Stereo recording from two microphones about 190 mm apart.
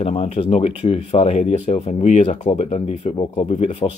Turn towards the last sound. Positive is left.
turn(degrees=30)  # may be behind; listen again after turning